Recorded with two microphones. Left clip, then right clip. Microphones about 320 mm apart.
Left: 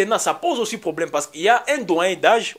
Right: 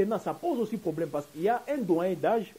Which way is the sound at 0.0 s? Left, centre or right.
Centre.